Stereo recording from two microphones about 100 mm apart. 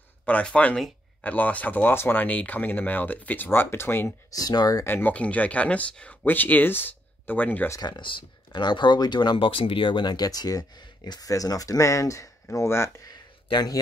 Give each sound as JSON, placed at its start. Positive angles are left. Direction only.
{"t": 0.2, "sound": "speech", "side_deg": 10}
{"t": 4.3, "sound": "speech", "side_deg": 40}
{"t": 4.8, "sound": "speech", "side_deg": 20}
{"t": 7.8, "sound": "speech", "side_deg": 50}
{"t": 13.1, "sound": "a sound", "side_deg": 45}